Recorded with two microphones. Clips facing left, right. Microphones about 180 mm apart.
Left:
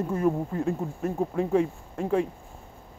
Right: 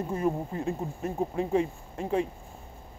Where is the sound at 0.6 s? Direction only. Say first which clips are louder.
Left 3 dB; 55° left (ahead or behind).